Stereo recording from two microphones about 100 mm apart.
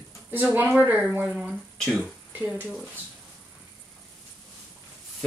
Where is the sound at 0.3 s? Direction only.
20° right (ahead or behind).